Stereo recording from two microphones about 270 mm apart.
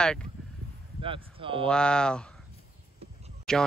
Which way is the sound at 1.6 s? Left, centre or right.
Centre.